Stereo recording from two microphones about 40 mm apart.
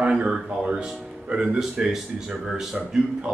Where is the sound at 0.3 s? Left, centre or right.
Right; by 3.0 s centre.